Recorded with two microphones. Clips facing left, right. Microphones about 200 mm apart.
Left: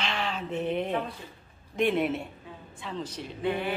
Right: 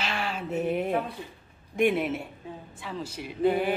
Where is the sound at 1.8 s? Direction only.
10° right (ahead or behind).